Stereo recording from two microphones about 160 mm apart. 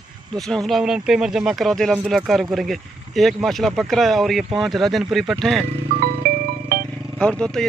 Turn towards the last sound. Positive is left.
turn(degrees=5)  # may be behind; listen again after turning